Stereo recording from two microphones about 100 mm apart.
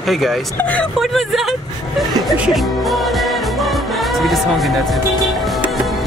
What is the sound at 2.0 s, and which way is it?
Music, centre (ahead or behind).